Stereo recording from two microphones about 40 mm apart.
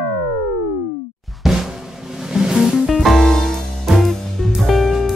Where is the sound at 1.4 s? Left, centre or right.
Centre.